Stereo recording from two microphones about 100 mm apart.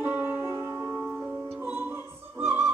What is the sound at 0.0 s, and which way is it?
Music, 20° right (ahead or behind).